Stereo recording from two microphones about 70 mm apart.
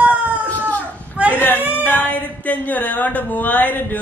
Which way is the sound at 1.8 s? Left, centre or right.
Left.